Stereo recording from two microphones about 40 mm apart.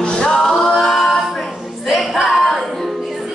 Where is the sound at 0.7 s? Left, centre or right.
Centre.